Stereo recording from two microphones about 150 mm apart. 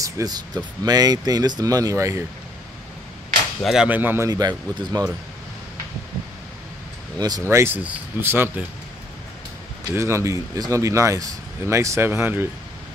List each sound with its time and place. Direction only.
0.0 s a man's voice: 25° right (ahead or behind)
3.6 s speech: 5° right (ahead or behind)
4.3 s a man's voice: 25° right (ahead or behind)
7.2 s a man's voice: 25° right (ahead or behind)
7.4 s speech: 15° right (ahead or behind)
9.9 s a man's voice: 20° right (ahead or behind)